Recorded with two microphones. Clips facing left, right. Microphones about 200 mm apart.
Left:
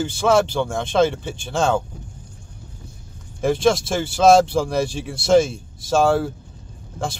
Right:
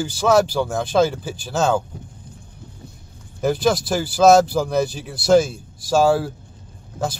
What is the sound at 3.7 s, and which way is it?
Speech, 25° left (ahead or behind).